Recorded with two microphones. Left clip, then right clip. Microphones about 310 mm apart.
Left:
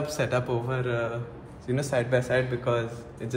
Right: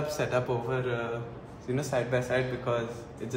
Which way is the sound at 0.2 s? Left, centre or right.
Left.